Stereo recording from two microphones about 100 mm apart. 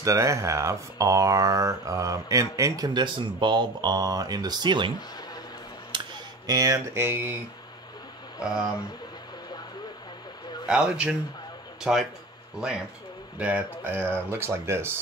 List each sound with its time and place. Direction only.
0.0 s speech: 30° right (ahead or behind); by 4.9 s 50° right (ahead or behind)
5.9 s music: 55° right (ahead or behind)
6.4 s speech: 35° right (ahead or behind)
10.7 s speech: 10° right (ahead or behind)